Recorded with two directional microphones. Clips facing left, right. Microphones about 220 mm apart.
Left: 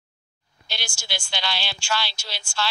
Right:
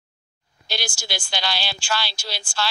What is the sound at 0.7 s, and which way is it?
Speech, 40° right (ahead or behind).